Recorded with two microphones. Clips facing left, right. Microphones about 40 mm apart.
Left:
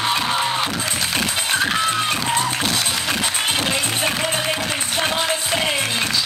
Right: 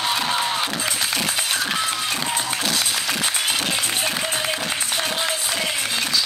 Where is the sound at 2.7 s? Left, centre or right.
Centre.